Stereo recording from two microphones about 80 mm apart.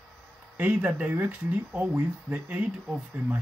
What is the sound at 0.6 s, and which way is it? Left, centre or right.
Speech, centre.